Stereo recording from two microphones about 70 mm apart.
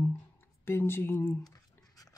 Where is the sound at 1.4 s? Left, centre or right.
Left.